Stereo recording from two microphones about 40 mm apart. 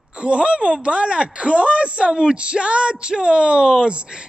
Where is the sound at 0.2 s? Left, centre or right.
Right.